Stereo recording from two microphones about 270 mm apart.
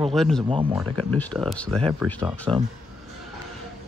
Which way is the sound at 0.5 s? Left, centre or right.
Centre.